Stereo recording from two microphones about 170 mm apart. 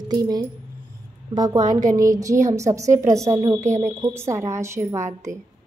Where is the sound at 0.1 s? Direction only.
25° right (ahead or behind).